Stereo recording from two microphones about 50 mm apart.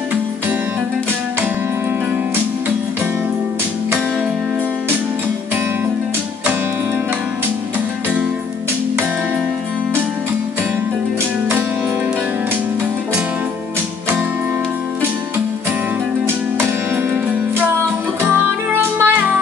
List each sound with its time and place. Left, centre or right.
18.2 s music: right